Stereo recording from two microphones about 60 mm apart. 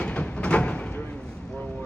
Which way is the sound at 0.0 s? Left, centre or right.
Centre.